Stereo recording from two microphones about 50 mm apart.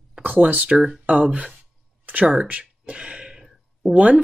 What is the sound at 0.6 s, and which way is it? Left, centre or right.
Speech, centre.